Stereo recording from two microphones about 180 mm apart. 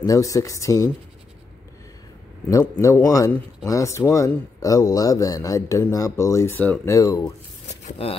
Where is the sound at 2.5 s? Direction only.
15° left (ahead or behind).